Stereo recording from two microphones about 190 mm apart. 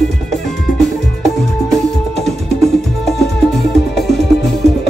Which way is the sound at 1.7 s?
Centre (ahead or behind).